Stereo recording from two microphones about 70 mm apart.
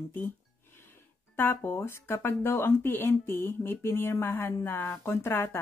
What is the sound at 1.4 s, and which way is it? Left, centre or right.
Speech, left.